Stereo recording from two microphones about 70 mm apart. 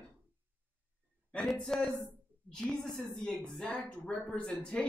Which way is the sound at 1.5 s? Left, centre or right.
Centre.